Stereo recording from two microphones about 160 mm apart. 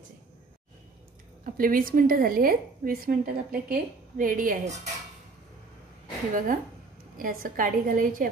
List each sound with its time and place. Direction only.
1.4 s a woman's voice: 60° right (ahead or behind)
6.3 s a woman's voice: 55° right (ahead or behind)